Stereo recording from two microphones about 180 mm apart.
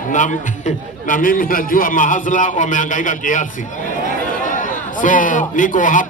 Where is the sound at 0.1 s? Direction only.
45° left (ahead or behind).